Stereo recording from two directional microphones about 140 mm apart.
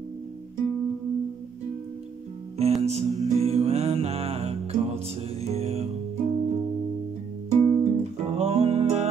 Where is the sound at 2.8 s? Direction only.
50° right (ahead or behind).